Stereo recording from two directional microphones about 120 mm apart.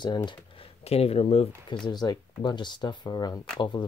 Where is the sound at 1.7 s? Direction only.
35° left (ahead or behind).